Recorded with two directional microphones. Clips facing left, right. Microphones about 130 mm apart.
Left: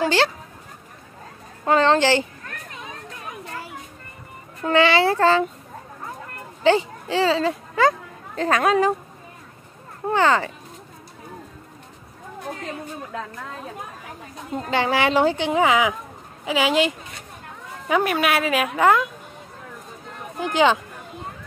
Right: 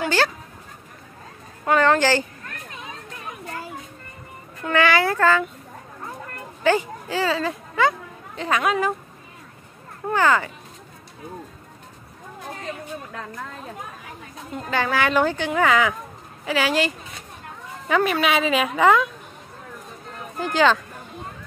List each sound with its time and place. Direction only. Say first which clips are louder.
0.0 s a sound: left 2 dB; 25° left (ahead or behind)
1.7 s a woman's voice: left 1 dB; 25° left (ahead or behind)
4.6 s a woman's voice: left 2 dB; 25° left (ahead or behind)
6.6 s a child's voice: left 2 dB; 25° left (ahead or behind)
10.0 s a woman's voice: left 1 dB; 25° left (ahead or behind)
14.5 s a woman's voice: left 2 dB; 25° left (ahead or behind); by 19.0 s 5° left (ahead or behind)
20.3 s speech: even; 15° left (ahead or behind)